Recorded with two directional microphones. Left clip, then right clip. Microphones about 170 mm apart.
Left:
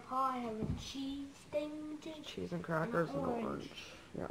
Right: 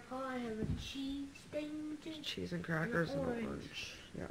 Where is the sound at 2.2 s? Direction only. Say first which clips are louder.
Right 1 dB; 25° right (ahead or behind).